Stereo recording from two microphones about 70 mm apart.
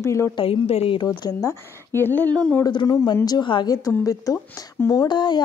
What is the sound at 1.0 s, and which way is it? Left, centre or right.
Speech, left.